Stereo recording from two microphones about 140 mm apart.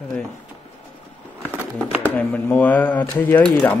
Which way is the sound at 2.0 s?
10° left (ahead or behind).